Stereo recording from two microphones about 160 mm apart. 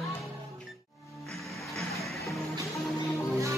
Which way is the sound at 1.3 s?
Centre (ahead or behind).